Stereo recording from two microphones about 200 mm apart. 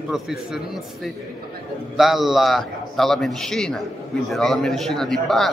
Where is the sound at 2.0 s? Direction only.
Centre (ahead or behind).